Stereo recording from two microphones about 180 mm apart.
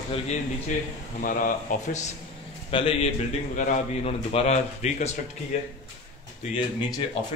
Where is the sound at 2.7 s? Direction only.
30° left (ahead or behind).